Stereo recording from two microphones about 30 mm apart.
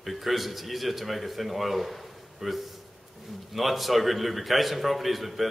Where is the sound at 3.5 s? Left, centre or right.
Centre.